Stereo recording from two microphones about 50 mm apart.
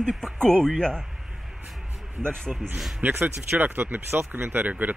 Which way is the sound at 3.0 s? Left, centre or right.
Right.